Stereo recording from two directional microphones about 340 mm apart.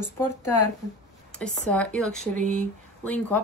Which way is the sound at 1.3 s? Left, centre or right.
Centre.